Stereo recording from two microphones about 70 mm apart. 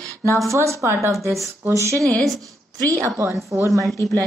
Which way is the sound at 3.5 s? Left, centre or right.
Right.